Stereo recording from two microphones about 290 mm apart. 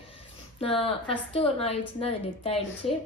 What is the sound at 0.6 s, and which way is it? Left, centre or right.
A woman's voice, centre.